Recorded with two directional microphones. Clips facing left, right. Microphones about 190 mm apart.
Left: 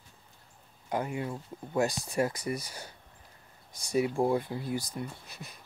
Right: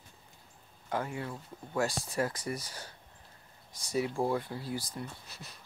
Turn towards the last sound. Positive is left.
turn(degrees=15)  # may be behind; listen again after turning